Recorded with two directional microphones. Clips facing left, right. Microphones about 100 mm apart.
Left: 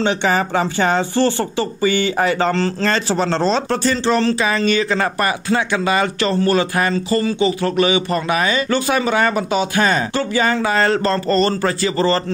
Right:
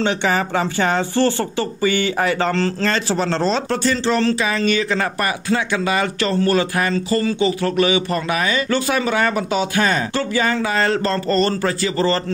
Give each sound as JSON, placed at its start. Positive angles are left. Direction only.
{"t": 0.0, "sound": "speech", "side_deg": 25}
{"t": 2.8, "sound": "speech", "side_deg": 35}